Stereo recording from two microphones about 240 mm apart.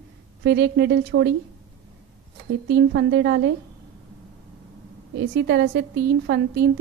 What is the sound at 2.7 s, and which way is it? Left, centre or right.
Speech, right.